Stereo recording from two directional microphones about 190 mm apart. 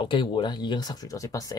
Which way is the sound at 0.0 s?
25° left (ahead or behind).